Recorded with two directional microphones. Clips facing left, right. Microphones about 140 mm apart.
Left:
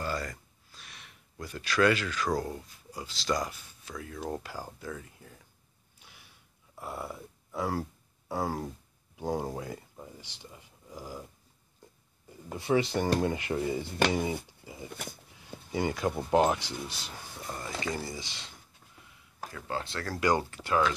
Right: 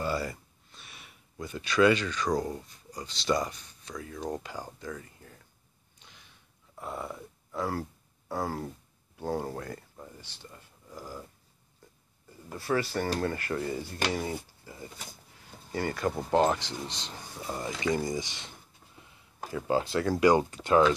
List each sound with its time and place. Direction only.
0.0 s a sound: 5° right (ahead or behind)
0.7 s speech: centre (ahead or behind)
5.9 s a sound: 10° left (ahead or behind)
8.3 s speech: 10° left (ahead or behind)
12.4 s speech: 20° left (ahead or behind)
17.4 s speech: 5° right (ahead or behind)
17.9 s speech: 15° right (ahead or behind)
19.0 s a sound: 25° right (ahead or behind)
19.5 s speech: 15° right (ahead or behind)